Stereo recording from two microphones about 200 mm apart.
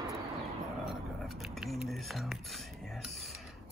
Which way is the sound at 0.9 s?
Centre (ahead or behind).